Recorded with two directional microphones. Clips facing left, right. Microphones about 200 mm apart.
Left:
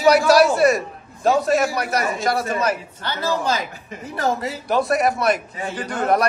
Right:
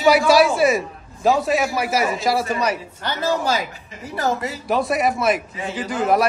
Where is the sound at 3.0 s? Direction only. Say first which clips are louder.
Right 2 dB; 15° right (ahead or behind).